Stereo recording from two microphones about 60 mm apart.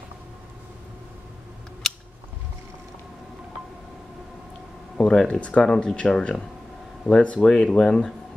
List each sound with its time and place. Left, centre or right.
4.9 s speech: centre